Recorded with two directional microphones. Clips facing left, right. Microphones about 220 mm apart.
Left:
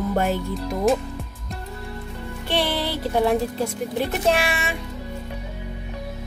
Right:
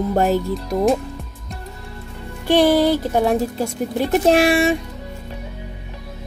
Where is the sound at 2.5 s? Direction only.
45° right (ahead or behind).